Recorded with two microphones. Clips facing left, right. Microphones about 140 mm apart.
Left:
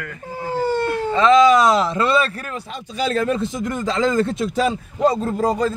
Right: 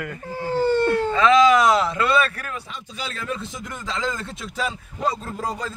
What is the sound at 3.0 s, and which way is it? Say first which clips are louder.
A man's voice: left 11 dB; 45° left (ahead or behind).